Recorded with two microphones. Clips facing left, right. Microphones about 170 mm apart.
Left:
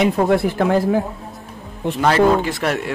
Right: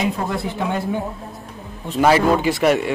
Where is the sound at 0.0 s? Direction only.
80° left.